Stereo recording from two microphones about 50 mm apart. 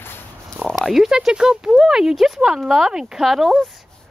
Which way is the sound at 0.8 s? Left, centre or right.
Centre.